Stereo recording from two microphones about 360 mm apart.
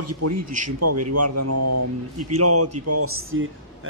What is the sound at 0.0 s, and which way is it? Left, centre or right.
A man's voice, right.